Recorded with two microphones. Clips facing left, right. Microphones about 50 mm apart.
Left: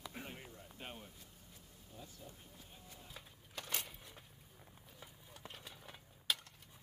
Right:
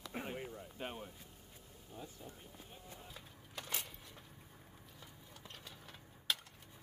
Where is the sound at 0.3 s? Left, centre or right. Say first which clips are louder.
Right 7 dB; centre.